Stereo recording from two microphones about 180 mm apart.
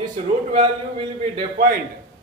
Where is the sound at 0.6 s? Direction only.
25° right (ahead or behind).